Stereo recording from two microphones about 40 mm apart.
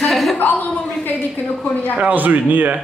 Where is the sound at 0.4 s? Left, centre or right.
Left.